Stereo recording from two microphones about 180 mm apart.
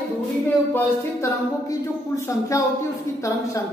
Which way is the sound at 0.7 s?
15° left (ahead or behind).